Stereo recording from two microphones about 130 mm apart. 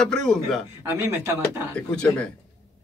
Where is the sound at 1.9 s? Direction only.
5° left (ahead or behind).